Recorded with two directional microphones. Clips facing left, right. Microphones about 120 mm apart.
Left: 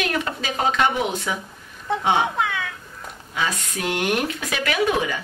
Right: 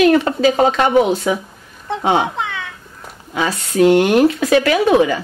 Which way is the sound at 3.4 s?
30° right (ahead or behind).